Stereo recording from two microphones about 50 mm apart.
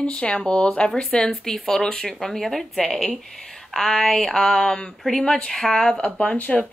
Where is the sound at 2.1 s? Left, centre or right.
Centre.